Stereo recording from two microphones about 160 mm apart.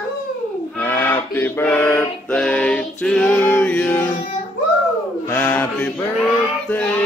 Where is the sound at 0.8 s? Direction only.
15° left (ahead or behind).